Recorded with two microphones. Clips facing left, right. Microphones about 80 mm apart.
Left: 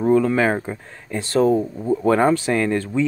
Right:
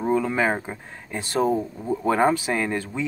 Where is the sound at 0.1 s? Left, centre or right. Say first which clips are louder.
Left 5 dB; centre.